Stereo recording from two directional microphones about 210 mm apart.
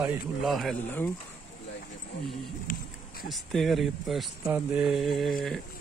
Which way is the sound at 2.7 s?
40° left (ahead or behind).